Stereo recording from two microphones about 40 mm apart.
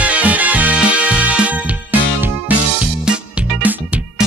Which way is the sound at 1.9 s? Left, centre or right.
Right.